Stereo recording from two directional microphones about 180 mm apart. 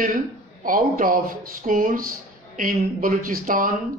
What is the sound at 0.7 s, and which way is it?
Speech, 50° right (ahead or behind).